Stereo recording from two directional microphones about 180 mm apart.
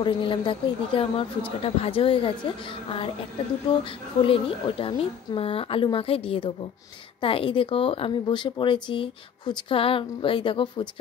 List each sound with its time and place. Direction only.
0.0 s a woman's voice: 25° left (ahead or behind)
3.7 s a woman's voice: 30° left (ahead or behind)